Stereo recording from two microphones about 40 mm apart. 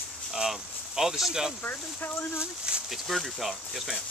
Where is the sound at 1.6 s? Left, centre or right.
Left.